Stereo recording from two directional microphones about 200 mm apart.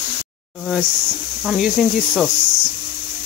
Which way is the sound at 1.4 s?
Centre (ahead or behind).